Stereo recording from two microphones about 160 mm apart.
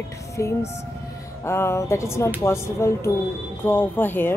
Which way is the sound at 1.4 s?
15° left (ahead or behind).